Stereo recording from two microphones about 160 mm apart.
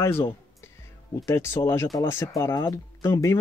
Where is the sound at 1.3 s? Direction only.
15° left (ahead or behind).